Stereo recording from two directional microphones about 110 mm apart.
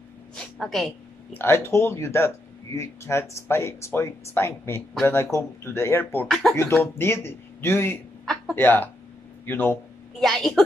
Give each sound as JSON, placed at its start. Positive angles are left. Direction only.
{"t": 0.6, "sound": "a woman's voice", "side_deg": 0}
{"t": 1.3, "sound": "speech", "side_deg": 20}
{"t": 6.2, "sound": "a woman's voice", "side_deg": 0}
{"t": 6.5, "sound": "speech", "side_deg": 25}
{"t": 10.2, "sound": "a woman's voice", "side_deg": 0}